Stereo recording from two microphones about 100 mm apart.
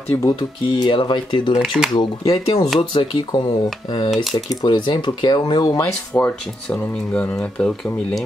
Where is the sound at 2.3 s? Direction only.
90° left.